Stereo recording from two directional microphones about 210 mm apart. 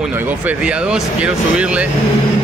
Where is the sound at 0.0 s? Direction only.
10° right (ahead or behind).